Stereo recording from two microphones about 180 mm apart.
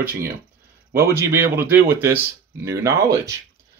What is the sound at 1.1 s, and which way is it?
Speech, 15° right (ahead or behind).